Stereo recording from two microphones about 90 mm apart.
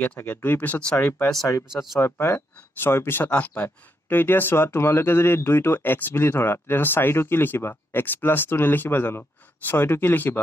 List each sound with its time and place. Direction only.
0.0 s speech: 15° left (ahead or behind)
1.7 s speech: centre (ahead or behind)
2.0 s speech: 25° left (ahead or behind)